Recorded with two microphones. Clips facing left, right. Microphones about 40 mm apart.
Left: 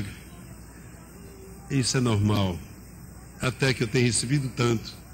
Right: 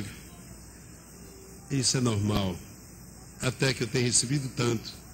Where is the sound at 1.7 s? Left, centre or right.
Centre.